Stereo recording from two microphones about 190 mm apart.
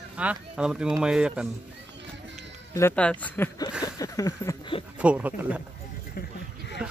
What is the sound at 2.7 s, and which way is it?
Speech, 10° left (ahead or behind).